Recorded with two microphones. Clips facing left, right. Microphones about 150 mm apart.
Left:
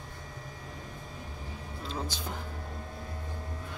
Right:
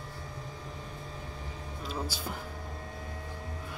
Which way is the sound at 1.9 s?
10° right (ahead or behind).